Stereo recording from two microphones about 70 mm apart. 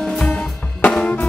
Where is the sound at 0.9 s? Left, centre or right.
Centre.